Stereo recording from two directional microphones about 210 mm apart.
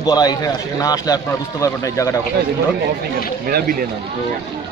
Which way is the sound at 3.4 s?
45° right (ahead or behind).